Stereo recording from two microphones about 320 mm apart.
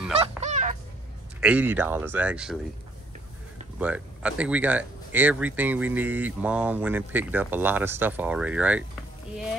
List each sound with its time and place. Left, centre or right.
0.4 s fowl: right
1.4 s speech: centre
3.8 s speech: centre